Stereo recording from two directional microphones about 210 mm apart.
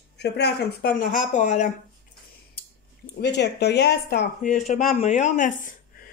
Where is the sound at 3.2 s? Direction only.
55° left (ahead or behind).